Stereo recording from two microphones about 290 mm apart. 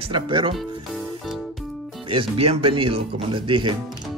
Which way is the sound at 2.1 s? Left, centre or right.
Centre.